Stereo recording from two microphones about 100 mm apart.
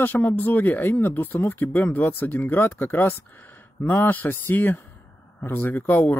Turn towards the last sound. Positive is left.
turn(degrees=20)  # may be behind; listen again after turning